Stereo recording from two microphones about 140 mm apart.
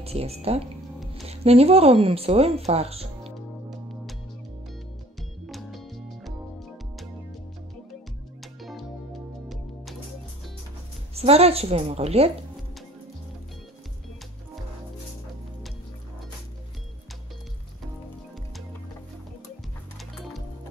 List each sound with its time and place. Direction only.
0.0 s a woman's voice: 45° right (ahead or behind)
3.7 s music: centre (ahead or behind)
5.5 s music: centre (ahead or behind)
8.5 s music: centre (ahead or behind)
11.1 s a woman's voice: 45° right (ahead or behind)